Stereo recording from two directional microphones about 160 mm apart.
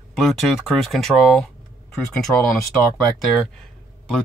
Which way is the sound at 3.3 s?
5° left (ahead or behind).